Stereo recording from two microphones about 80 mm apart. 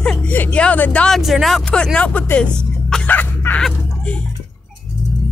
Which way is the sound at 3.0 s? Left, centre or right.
Left.